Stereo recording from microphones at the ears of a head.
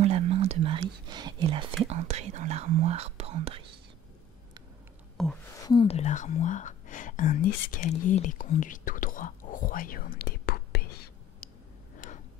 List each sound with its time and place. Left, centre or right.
0.0 s whispering: right
5.9 s whispering: left